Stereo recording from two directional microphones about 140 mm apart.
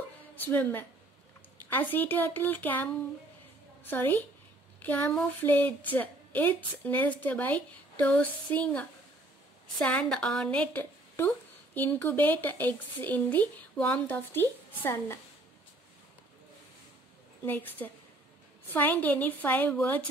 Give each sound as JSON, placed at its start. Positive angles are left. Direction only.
{"t": 0.5, "sound": "speech", "side_deg": 15}
{"t": 3.9, "sound": "speech", "side_deg": 15}
{"t": 17.8, "sound": "speech", "side_deg": 15}